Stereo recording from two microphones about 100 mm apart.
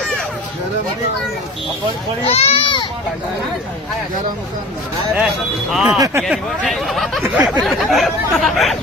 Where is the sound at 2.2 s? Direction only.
90° left; by 2.8 s 65° left (ahead or behind).